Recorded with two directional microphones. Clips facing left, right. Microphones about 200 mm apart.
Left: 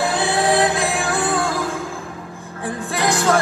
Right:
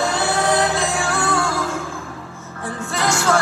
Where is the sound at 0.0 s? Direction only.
15° left (ahead or behind).